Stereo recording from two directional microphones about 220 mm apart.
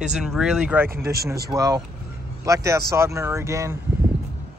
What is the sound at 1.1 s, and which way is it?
Speech, 45° right (ahead or behind).